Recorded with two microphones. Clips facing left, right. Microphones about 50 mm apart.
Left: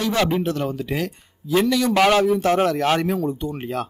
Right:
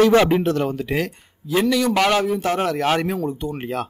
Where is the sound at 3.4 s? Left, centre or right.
Right.